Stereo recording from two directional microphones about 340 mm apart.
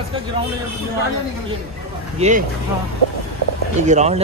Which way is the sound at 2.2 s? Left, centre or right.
Right.